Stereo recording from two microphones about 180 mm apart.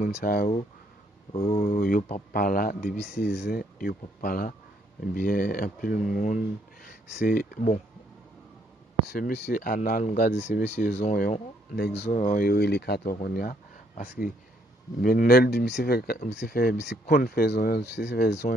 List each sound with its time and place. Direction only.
0.1 s speech: 55° left (ahead or behind)
3.2 s speech: 70° left (ahead or behind); by 7.8 s 50° left (ahead or behind)
9.1 s speech: 60° left (ahead or behind)
12.1 s speech: 45° left (ahead or behind)
12.4 s speech: 65° left (ahead or behind)
17.1 s speech: 55° left (ahead or behind)